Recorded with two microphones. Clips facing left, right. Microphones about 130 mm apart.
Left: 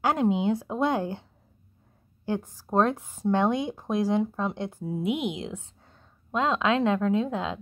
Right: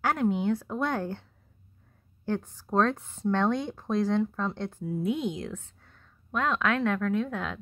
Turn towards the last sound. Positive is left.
turn(degrees=20)  # may be behind; listen again after turning